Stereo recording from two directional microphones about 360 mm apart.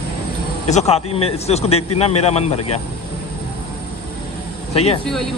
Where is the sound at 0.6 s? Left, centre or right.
Centre.